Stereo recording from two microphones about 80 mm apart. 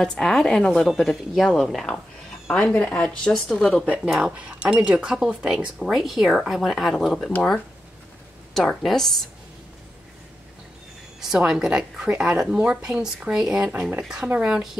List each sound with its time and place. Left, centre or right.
0.0 s a woman's voice: centre
3.9 s a woman's voice: centre
8.5 s a woman's voice: centre
11.1 s a woman's voice: centre